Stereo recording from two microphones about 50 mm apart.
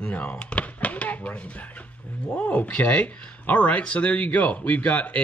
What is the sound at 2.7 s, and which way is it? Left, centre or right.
Speech, left.